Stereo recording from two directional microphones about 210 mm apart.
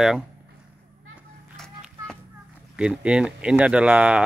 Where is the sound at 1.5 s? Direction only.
Centre (ahead or behind).